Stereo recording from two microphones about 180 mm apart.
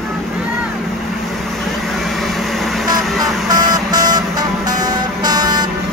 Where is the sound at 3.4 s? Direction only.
20° right (ahead or behind).